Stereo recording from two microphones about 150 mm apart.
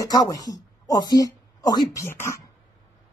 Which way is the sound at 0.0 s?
25° left (ahead or behind).